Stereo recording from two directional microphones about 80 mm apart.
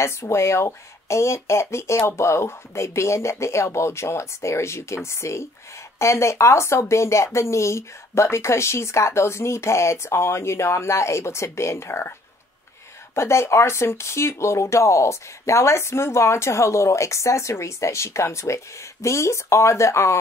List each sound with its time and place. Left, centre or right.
0.0 s speech: left
13.1 s speech: left